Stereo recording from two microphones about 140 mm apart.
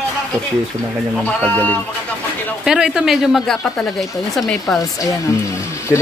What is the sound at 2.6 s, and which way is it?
Speech, 5° right (ahead or behind).